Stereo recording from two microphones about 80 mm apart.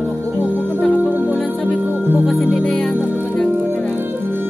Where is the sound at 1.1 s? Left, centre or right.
Right.